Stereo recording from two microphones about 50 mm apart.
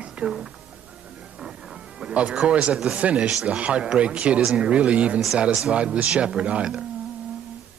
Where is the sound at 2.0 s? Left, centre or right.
Right.